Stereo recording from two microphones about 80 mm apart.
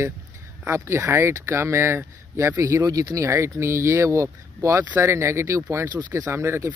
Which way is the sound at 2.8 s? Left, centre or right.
Right.